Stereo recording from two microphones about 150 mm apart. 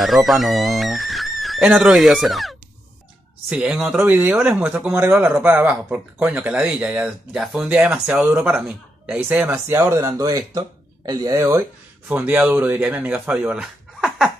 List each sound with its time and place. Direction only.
0.0 s speech: centre (ahead or behind)